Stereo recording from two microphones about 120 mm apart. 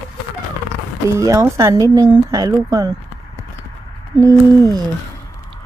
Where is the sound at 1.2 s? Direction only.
25° right (ahead or behind).